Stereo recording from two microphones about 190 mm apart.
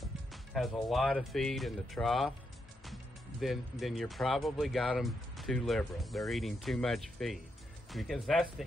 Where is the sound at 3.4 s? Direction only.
Centre (ahead or behind).